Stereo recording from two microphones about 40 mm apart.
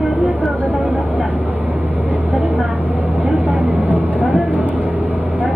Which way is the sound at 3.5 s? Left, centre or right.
Right.